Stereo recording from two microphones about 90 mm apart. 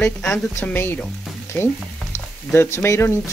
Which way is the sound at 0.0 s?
5° left (ahead or behind).